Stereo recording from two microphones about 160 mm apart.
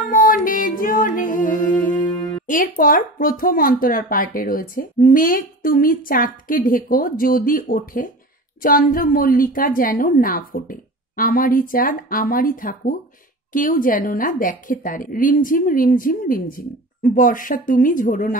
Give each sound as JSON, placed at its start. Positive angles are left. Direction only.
{"t": 0.0, "sound": "music", "side_deg": 55}
{"t": 2.4, "sound": "speech", "side_deg": 55}